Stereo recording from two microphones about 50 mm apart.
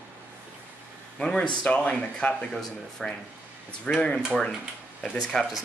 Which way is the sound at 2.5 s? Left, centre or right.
Centre.